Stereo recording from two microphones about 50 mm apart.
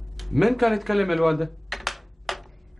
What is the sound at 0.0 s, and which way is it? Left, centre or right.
Speech, centre.